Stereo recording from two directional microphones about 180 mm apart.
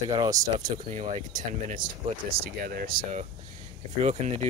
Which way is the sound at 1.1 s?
45° right (ahead or behind).